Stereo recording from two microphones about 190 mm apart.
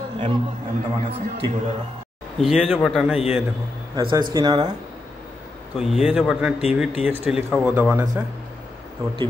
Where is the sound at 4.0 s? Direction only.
25° right (ahead or behind).